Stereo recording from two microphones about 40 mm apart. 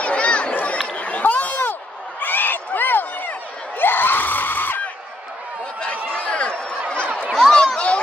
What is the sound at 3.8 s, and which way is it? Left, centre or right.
Screaming, left.